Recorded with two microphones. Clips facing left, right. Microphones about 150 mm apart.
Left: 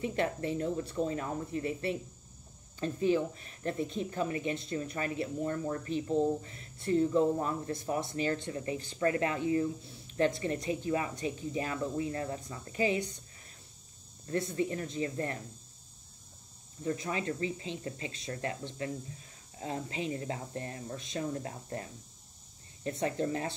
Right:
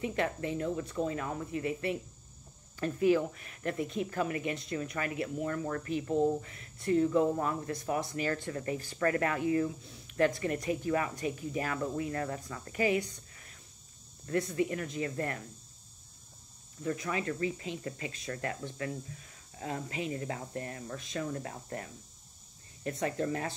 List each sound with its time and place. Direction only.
0.0 s speech: 35° left (ahead or behind)
16.8 s speech: 30° left (ahead or behind)